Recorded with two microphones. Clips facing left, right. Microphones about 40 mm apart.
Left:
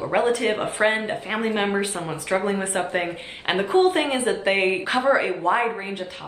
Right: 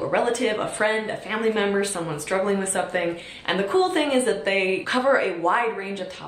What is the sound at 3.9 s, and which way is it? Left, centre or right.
Speech, left.